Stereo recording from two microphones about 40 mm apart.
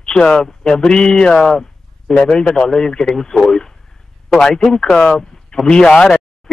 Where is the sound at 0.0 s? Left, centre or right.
Left.